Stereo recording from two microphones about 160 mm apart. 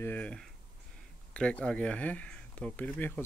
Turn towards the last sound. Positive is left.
turn(degrees=10)  # may be behind; listen again after turning